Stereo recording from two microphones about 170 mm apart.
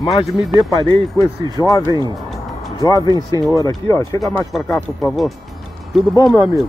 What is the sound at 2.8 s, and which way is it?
Speech, 20° left (ahead or behind).